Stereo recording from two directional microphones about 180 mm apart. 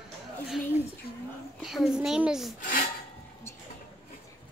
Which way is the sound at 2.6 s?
50° left (ahead or behind).